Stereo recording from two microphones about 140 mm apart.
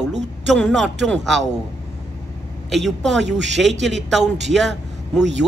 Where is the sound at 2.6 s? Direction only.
Centre (ahead or behind).